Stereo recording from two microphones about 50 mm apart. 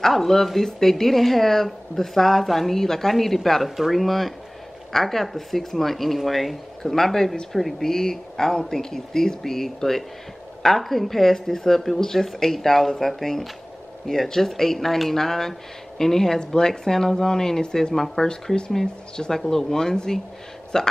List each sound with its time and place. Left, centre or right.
0.0 s speech: centre